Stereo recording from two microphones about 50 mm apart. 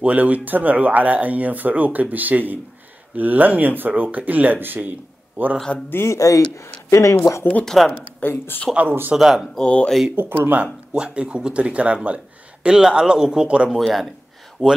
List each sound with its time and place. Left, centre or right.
0.0 s speech: right
6.0 s speech: left
7.6 s speech: centre
8.3 s speech: left
9.1 s speech: centre
9.6 s speech: left
10.1 s speech: right
11.0 s speech: centre
13.7 s speech: centre
14.6 s speech: centre